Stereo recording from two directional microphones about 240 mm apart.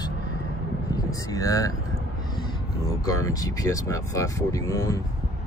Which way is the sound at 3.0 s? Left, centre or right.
Centre.